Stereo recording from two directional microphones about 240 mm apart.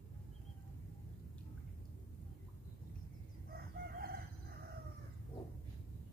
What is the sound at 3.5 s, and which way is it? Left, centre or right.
Crowing, right.